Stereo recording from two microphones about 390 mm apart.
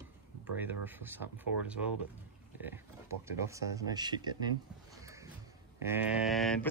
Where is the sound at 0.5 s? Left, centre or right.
Centre.